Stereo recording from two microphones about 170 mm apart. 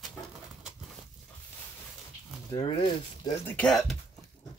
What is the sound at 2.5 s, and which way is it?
Speech, 30° left (ahead or behind).